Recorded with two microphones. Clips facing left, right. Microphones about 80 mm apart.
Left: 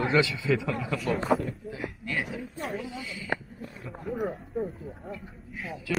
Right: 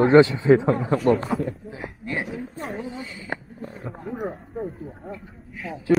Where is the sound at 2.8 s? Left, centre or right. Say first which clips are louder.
Right 4 dB; right.